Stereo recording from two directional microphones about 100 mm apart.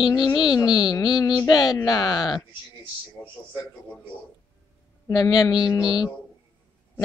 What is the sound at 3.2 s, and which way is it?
Speech, 5° left (ahead or behind).